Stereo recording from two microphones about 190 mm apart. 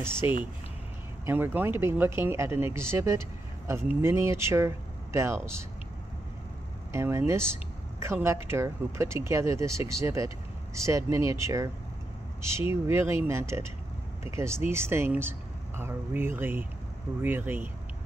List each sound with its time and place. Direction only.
0.2 s speech: 10° right (ahead or behind)
6.9 s speech: 15° right (ahead or behind)